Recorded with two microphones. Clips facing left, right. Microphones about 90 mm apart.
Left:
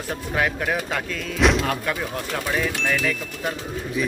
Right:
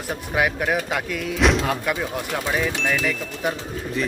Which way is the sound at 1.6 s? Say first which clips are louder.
Right 1 dB; 10° right (ahead or behind).